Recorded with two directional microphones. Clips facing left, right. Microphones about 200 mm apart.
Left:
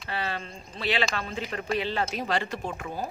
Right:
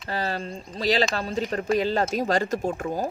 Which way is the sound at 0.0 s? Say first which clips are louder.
Right 4 dB; 40° right (ahead or behind).